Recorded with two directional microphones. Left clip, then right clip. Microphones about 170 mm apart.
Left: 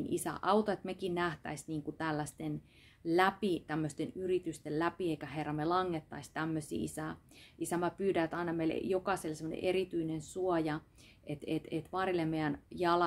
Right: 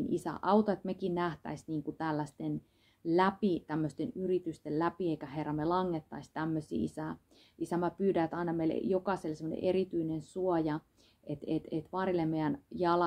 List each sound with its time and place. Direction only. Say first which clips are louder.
0.1 s speech: right 1 dB; 10° left (ahead or behind)